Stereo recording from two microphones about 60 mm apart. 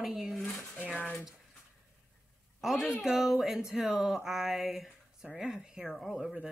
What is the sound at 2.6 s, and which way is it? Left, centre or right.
Speech, centre.